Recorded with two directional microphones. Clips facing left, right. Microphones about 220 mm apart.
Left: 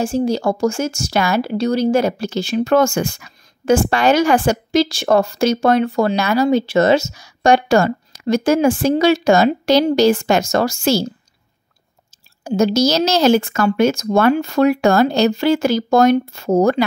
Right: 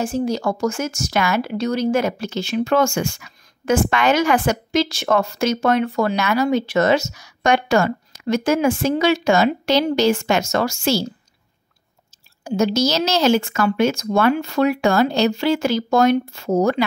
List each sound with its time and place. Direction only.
0.0 s speech: 30° left (ahead or behind)
12.4 s speech: 40° left (ahead or behind)